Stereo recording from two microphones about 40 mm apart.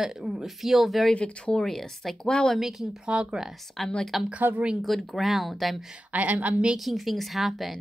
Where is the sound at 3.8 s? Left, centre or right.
Centre.